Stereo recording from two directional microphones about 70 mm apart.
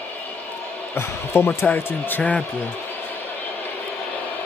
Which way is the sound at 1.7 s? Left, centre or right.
Left.